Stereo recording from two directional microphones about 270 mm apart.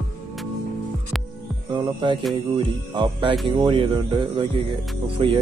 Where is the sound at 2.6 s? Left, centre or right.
Centre.